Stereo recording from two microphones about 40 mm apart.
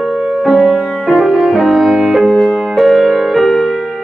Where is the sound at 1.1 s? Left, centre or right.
Centre.